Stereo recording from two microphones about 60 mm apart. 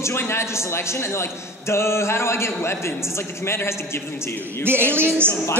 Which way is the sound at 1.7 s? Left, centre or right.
Left.